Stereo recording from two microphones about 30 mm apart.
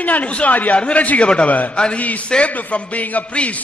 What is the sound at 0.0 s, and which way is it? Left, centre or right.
A woman's voice, left.